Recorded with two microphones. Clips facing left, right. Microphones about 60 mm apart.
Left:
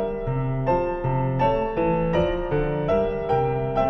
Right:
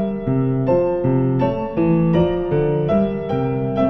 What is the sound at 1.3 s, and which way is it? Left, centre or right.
Music, centre.